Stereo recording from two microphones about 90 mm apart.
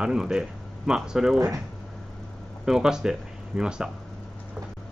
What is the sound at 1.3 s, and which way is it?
Speech, 35° right (ahead or behind).